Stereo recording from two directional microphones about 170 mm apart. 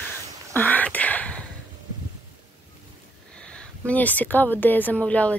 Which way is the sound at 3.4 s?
5° left (ahead or behind).